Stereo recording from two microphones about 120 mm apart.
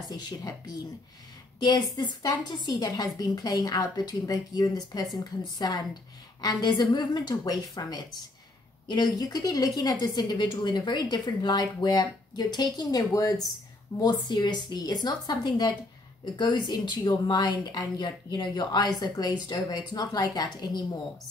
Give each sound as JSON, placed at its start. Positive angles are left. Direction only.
{"t": 0.1, "sound": "a woman's voice", "side_deg": 35}
{"t": 9.0, "sound": "a woman's voice", "side_deg": 30}
{"t": 14.2, "sound": "a woman's voice", "side_deg": 35}